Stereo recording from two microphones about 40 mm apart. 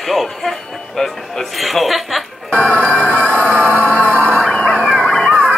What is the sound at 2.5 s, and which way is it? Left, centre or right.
Speech, left.